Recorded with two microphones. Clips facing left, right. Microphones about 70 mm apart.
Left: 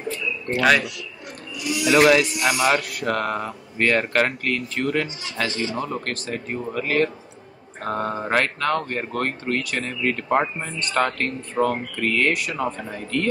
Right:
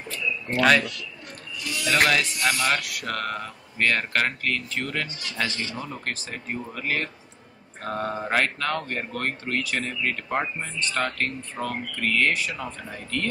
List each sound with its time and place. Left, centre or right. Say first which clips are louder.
0.5 s speech: left 1 dB; centre
1.6 s speech: left 6 dB; centre
2.8 s speech: left 6 dB; centre
5.2 s speech: left 4 dB; left
6.0 s speech: left 4 dB; centre